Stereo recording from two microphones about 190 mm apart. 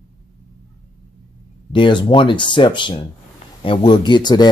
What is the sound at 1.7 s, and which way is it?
Speech, 25° left (ahead or behind).